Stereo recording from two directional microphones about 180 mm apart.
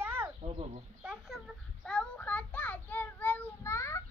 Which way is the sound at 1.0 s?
Centre (ahead or behind).